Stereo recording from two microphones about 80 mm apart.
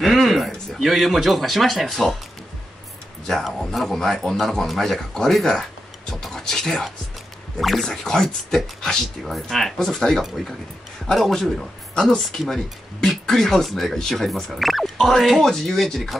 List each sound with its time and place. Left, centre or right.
0.0 s speech: centre
3.3 s speech: centre